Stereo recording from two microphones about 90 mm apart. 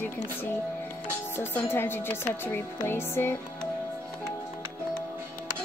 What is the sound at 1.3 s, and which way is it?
A woman's voice, 25° left (ahead or behind).